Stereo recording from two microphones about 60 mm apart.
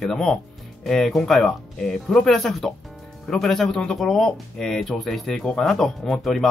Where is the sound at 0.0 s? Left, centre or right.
Centre.